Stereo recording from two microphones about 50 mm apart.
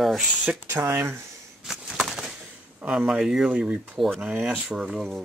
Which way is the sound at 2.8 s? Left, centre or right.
Centre.